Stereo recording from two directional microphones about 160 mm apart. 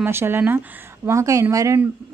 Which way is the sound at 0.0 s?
15° right (ahead or behind).